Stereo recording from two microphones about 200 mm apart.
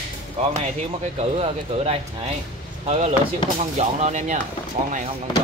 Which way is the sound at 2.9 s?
30° right (ahead or behind).